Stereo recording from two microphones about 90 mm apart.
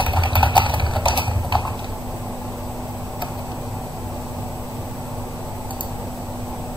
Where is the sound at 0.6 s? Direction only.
65° left (ahead or behind).